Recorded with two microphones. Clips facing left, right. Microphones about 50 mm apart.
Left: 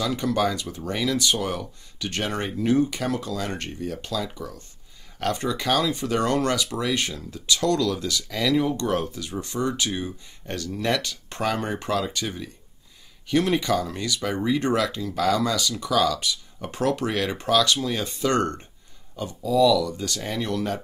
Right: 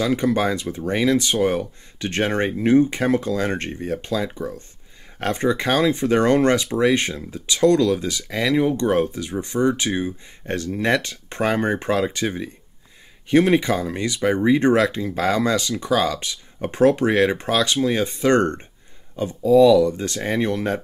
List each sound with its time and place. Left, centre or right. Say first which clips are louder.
0.0 s speech: right 4 dB; right